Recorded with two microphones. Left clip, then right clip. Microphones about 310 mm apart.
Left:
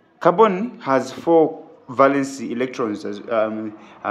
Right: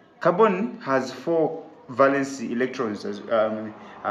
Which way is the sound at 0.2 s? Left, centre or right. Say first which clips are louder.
Left 4 dB; left.